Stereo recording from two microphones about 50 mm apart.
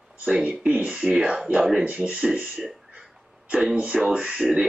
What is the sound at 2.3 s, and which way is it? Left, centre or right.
Speech, right.